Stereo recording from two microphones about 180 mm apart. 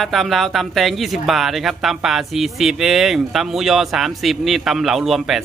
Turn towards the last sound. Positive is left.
turn(degrees=0)  # may be behind; listen again after turning